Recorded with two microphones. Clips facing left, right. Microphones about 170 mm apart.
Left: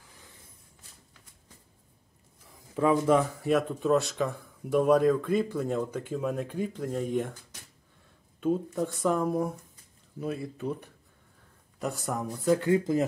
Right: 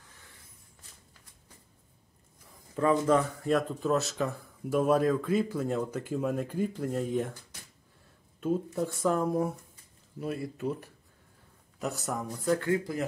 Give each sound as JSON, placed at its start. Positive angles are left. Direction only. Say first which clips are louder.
{"t": 2.7, "sound": "speech", "louder": "left 1 dB", "side_deg": 10}
{"t": 8.4, "sound": "speech", "louder": "left 2 dB", "side_deg": 0}
{"t": 12.4, "sound": "speech", "louder": "left 4 dB", "side_deg": 20}